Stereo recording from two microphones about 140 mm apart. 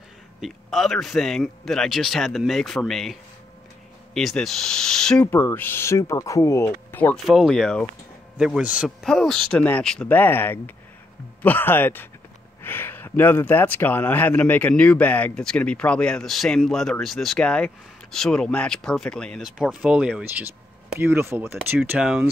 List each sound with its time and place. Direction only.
0.4 s speech: centre (ahead or behind)
5.3 s speech: 15° left (ahead or behind)
7.2 s speech: centre (ahead or behind)